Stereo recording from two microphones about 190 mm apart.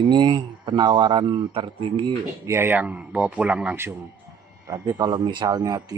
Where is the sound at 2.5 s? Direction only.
10° right (ahead or behind).